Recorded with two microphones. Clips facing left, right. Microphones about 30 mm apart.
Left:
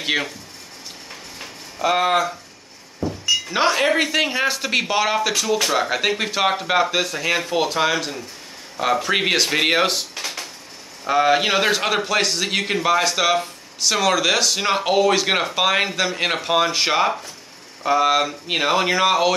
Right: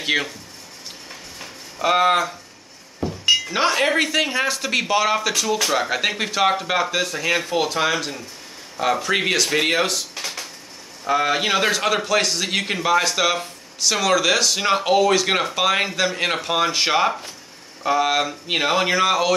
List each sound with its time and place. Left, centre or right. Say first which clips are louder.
0.0 s speech: right 1 dB; centre
1.8 s a man's voice: right 1 dB; centre
3.0 s a sound: left 1 dB; right
3.4 s a man's voice: left 1 dB; centre
10.1 s dishes: left 1 dB; centre
11.1 s a man's voice: left 2 dB; centre